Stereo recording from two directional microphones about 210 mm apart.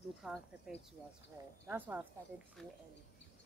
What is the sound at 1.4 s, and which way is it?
Speech, 15° right (ahead or behind).